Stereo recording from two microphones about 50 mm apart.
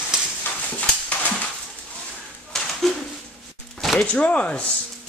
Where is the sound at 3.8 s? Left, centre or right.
Centre.